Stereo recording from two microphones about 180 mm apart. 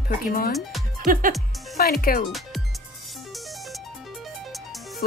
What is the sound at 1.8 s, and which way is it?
Speech, 55° left (ahead or behind).